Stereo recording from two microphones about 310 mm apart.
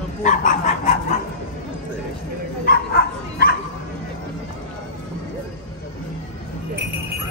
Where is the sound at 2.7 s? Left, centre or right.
Left.